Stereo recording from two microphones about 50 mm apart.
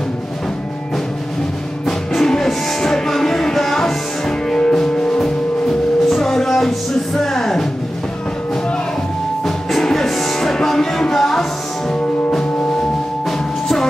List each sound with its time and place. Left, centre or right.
1.9 s music: centre
9.4 s music: centre